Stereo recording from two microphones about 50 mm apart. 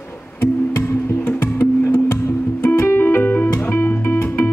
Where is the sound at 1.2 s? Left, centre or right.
Left.